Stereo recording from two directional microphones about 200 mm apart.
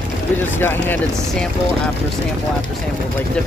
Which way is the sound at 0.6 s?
10° left (ahead or behind).